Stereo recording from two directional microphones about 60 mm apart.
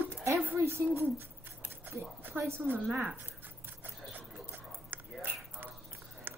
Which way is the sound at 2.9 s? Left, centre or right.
Right.